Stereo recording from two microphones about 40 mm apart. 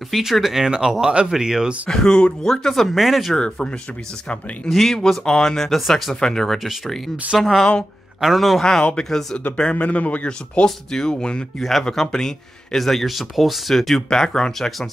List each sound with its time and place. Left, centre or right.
0.1 s speech: centre
0.7 s speech: centre
1.9 s speech: centre
2.5 s speech: centre
3.3 s speech: centre
4.6 s speech: centre
5.8 s speech: centre
6.1 s speech: centre
7.3 s speech: centre
8.9 s speech: centre
9.6 s speech: left
9.8 s a man's voice: left
10.2 s speech: left; by 14.0 s centre
14.1 s speech: centre